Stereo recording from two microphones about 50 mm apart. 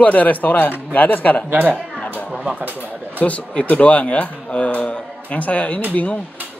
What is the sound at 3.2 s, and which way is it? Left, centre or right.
Speech, left.